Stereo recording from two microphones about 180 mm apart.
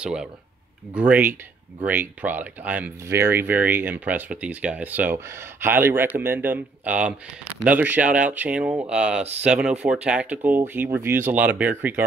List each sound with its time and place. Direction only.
0.0 s speech: 5° right (ahead or behind)